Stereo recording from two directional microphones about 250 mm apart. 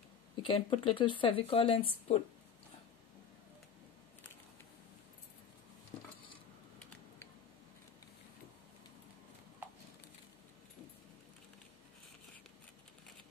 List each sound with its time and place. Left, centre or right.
0.4 s speech: left